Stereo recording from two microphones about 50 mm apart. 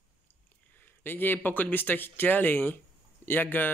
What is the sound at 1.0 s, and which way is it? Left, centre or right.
Speech, left.